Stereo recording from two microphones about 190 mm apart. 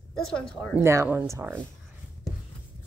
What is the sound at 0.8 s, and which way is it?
Speech, 15° right (ahead or behind).